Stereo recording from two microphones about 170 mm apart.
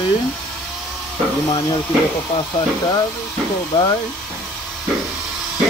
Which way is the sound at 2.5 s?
20° left (ahead or behind).